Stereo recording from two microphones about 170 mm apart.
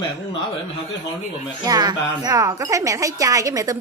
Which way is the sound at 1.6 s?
25° right (ahead or behind).